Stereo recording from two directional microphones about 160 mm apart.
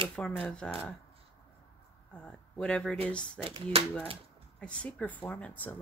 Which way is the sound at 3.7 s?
35° right (ahead or behind).